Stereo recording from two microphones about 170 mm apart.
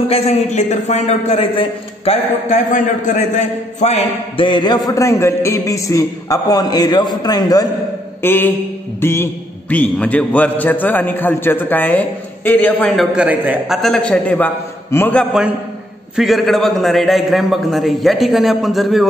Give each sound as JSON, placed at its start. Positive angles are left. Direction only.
{"t": 0.1, "sound": "a man's voice", "side_deg": 40}
{"t": 2.5, "sound": "a man's voice", "side_deg": 45}
{"t": 4.5, "sound": "a man's voice", "side_deg": 25}
{"t": 8.2, "sound": "mantra", "side_deg": 10}
{"t": 9.0, "sound": "a man's voice", "side_deg": 15}
{"t": 13.7, "sound": "a man's voice", "side_deg": 0}
{"t": 16.2, "sound": "a man's voice", "side_deg": 0}